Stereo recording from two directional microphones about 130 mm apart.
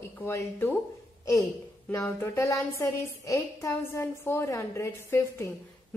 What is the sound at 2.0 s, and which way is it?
A woman's voice, 15° left (ahead or behind).